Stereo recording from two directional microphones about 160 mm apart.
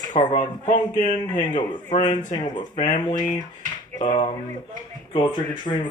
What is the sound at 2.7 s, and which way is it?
Speech, 45° left (ahead or behind).